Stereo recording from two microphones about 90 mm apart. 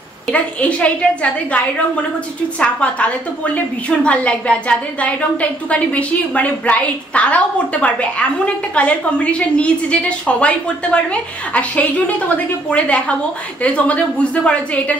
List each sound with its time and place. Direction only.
0.3 s a woman's voice: 15° left (ahead or behind)
2.6 s a woman's voice: 15° left (ahead or behind)